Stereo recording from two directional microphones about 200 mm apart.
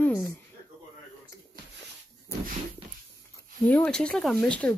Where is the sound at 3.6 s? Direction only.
5° left (ahead or behind).